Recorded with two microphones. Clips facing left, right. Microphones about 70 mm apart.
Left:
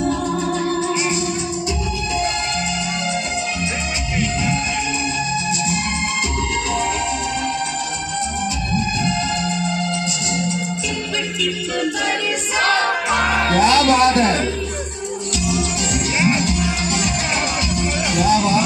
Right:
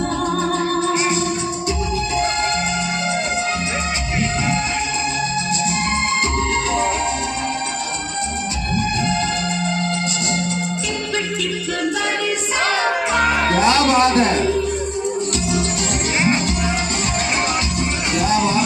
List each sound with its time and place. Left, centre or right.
13.4 s music: right
15.4 s music: right
18.1 s music: right